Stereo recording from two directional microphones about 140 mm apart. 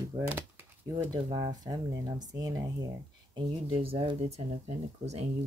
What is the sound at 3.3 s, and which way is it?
Speech, 40° right (ahead or behind).